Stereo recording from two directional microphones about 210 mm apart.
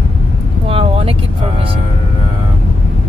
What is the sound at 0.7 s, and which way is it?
Vehicle, 25° right (ahead or behind).